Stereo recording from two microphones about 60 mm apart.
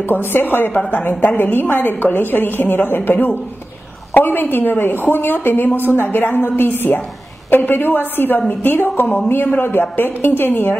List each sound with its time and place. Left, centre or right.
0.0 s a woman's voice: left